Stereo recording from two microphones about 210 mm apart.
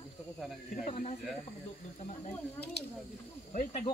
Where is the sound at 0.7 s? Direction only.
40° left (ahead or behind).